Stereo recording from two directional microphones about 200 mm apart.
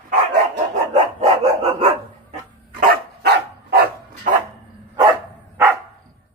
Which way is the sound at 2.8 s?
50° right (ahead or behind).